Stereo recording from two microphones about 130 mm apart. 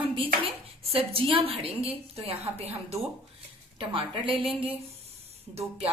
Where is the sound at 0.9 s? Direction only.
45° right (ahead or behind).